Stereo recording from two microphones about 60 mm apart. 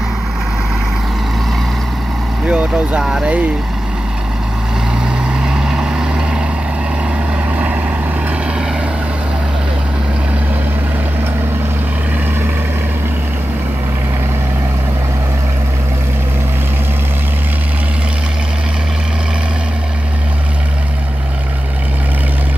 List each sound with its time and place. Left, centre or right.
2.4 s vehicle: centre
3.0 s speech: centre
5.4 s vehicle: centre
7.5 s vehicle: right